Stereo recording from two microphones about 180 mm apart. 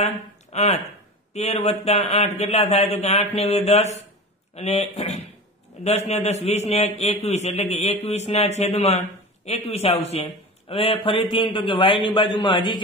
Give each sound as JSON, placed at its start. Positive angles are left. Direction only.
{"t": 0.5, "sound": "a man's voice", "side_deg": 35}